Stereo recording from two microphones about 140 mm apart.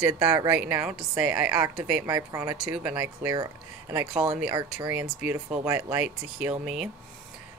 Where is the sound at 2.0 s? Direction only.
25° right (ahead or behind).